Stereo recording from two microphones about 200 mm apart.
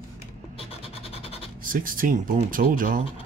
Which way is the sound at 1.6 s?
45° right (ahead or behind).